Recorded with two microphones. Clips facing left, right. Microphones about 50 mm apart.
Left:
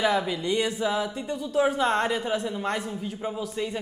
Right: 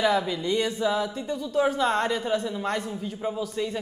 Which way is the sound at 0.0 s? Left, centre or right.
Centre.